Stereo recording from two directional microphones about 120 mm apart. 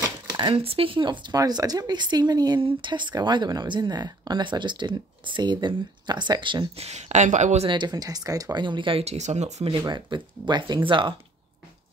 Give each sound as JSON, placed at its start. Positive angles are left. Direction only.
{"t": 0.0, "sound": "speech", "side_deg": -35}
{"t": 6.8, "sound": "speech", "side_deg": -65}
{"t": 7.6, "sound": "speech", "side_deg": -40}
{"t": 9.0, "sound": "speech", "side_deg": -65}
{"t": 9.7, "sound": "speech", "side_deg": -40}